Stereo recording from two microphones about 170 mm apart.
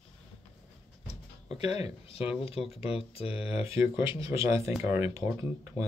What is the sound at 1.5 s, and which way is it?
Speech, 35° left (ahead or behind).